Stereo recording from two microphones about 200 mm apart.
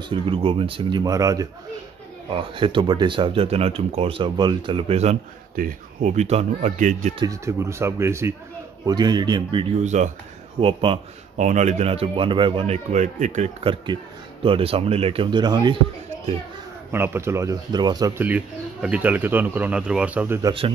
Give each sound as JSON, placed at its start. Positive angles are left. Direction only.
{"t": 0.1, "sound": "speech", "side_deg": -25}
{"t": 5.6, "sound": "a man's voice", "side_deg": -40}
{"t": 7.2, "sound": "a man's voice", "side_deg": -15}
{"t": 16.9, "sound": "speech", "side_deg": -10}
{"t": 20.4, "sound": "speech", "side_deg": -25}